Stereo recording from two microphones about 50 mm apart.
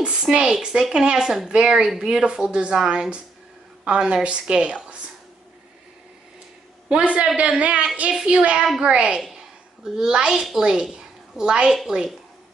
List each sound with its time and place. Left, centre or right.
0.0 s a woman's voice: centre
6.9 s a woman's voice: right
9.2 s a sound: centre
10.6 s a woman's voice: centre